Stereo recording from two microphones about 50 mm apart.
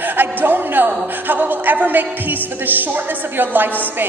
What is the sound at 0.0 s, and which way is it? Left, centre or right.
A woman's voice, right.